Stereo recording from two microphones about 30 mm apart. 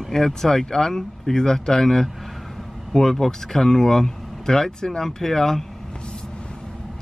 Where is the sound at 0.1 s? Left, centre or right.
Centre.